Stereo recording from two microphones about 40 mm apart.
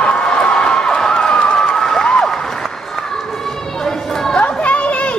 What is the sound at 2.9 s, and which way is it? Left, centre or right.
Run, centre.